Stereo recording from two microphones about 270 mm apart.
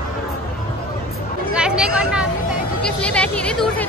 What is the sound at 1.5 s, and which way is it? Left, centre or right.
Chatter, centre.